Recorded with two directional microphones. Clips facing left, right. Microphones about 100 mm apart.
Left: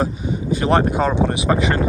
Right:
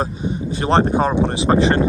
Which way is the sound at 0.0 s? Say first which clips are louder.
Left 1 dB; 25° right (ahead or behind).